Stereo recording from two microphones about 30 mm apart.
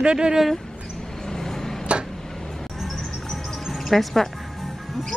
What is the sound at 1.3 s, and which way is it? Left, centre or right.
Vehicle, centre.